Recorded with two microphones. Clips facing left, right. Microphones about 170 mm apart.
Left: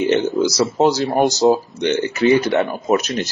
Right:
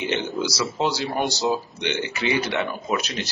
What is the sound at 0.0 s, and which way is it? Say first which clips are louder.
Speech: left 9 dB; 45° left (ahead or behind).